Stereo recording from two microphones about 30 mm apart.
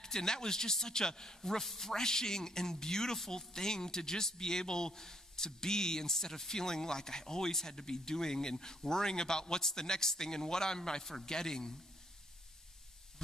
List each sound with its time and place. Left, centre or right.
0.0 s a man's voice: left